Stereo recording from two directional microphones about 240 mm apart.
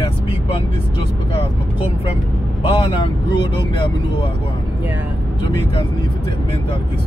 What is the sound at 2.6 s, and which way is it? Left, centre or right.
Speech, left.